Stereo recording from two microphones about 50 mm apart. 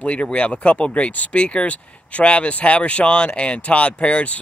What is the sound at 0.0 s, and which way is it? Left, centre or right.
Speech, left.